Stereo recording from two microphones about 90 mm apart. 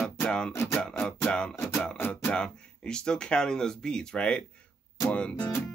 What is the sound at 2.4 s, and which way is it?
Speech, 10° left (ahead or behind).